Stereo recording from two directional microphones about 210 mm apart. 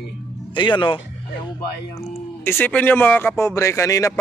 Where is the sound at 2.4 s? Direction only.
10° left (ahead or behind).